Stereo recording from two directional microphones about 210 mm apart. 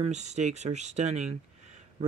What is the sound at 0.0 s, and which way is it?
Speech, 35° right (ahead or behind).